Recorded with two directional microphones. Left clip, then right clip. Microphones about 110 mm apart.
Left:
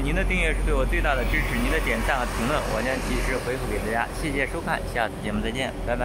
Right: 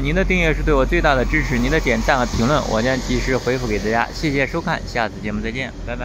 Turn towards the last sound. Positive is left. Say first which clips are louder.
# right 1 dB
turn(degrees=-25)  # may be behind; listen again after turning